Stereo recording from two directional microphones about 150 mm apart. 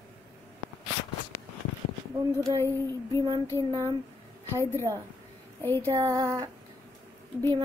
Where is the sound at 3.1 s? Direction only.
30° right (ahead or behind).